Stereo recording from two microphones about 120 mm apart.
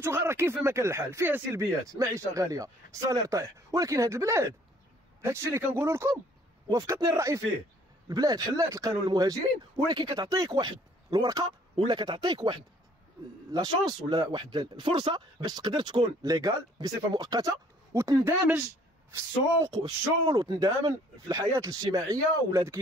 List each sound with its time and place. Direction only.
0.0 s speech: 20° right (ahead or behind)